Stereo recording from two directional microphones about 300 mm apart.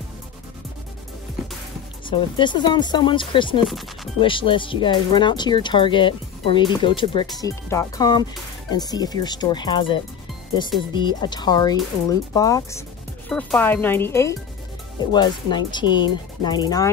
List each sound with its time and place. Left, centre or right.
2.0 s speech: centre
3.6 s speech: centre
4.2 s speech: centre